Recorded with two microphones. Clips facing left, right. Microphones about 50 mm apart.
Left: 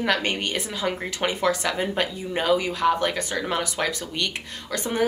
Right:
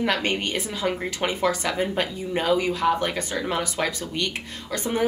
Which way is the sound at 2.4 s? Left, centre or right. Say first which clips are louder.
Left 1 dB; centre.